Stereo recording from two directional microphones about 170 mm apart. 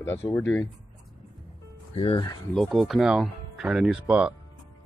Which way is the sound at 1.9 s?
35° left (ahead or behind).